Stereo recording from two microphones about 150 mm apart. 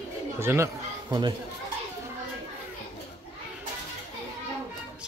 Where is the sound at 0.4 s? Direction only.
15° right (ahead or behind).